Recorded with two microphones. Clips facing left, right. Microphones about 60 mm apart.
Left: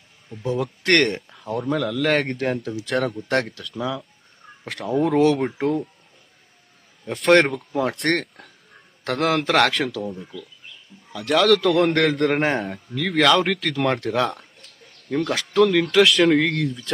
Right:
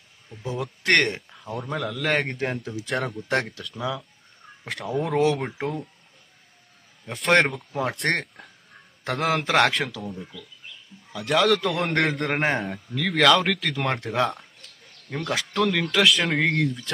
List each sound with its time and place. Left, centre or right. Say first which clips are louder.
0.4 s speech: left 6 dB; centre
7.1 s speech: left 4 dB; centre